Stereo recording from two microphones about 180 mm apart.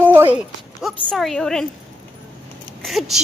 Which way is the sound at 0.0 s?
10° right (ahead or behind).